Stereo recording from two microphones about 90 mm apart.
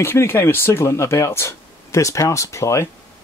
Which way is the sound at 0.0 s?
30° left (ahead or behind).